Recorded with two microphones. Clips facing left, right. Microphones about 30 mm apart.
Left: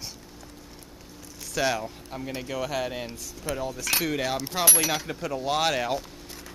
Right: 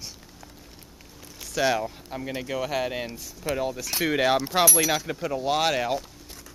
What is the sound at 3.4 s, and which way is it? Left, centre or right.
Speech, right.